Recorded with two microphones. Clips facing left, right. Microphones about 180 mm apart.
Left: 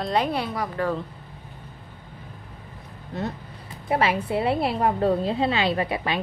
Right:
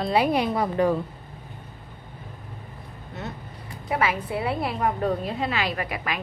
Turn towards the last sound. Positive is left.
turn(degrees=30)  # may be behind; listen again after turning